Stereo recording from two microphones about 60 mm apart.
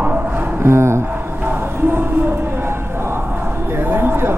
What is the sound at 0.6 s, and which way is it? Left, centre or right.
Music, right.